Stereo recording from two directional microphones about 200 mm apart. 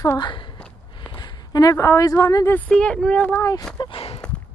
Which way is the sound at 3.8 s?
25° left (ahead or behind).